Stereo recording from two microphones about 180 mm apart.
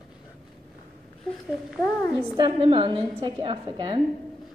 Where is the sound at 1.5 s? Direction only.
5° left (ahead or behind).